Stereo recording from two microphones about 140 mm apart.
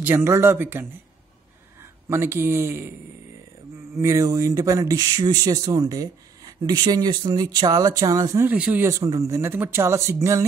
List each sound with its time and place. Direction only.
0.0 s a man's voice: 15° right (ahead or behind)
3.9 s speech: 20° right (ahead or behind)
8.5 s speech: 10° right (ahead or behind)
8.8 s speech: 25° right (ahead or behind)